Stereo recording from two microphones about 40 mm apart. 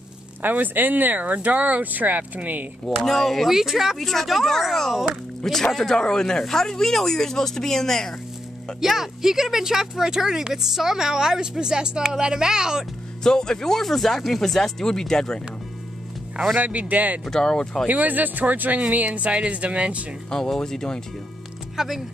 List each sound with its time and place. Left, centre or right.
0.4 s speech: right
3.0 s speech: centre
3.4 s speech: centre
4.0 s speech: centre
8.8 s speech: centre
13.2 s speech: centre
16.5 s speech: right
17.2 s speech: centre
17.8 s speech: right
18.8 s speech: right
20.2 s speech: centre
21.7 s speech: centre